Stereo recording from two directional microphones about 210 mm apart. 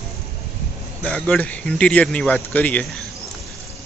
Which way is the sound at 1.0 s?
5° left (ahead or behind).